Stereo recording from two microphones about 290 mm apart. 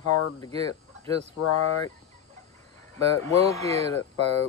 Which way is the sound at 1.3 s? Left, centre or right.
Left.